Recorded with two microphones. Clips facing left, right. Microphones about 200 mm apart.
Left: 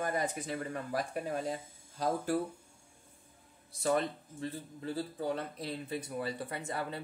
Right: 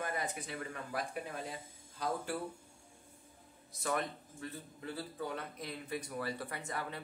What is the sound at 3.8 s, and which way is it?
Speech, 30° left (ahead or behind).